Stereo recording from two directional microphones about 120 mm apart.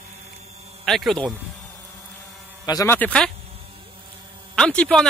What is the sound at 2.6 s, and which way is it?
Speech, 30° left (ahead or behind).